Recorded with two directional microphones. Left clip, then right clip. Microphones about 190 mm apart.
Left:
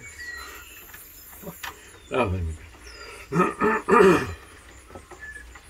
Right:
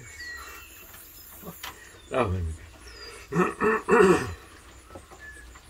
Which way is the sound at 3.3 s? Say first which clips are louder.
Left 2 dB; 25° left (ahead or behind).